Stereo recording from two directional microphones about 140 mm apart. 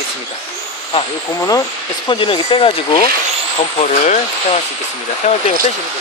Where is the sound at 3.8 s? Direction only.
55° left (ahead or behind).